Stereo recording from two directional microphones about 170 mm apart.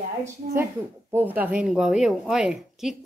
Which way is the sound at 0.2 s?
15° right (ahead or behind).